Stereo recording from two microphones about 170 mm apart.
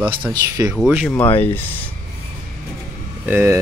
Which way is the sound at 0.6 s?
5° right (ahead or behind).